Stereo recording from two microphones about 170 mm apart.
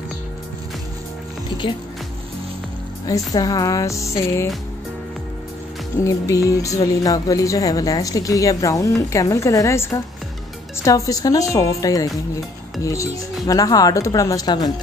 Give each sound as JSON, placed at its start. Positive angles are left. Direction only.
{"t": 3.1, "sound": "speech", "side_deg": 20}
{"t": 6.0, "sound": "speech", "side_deg": 20}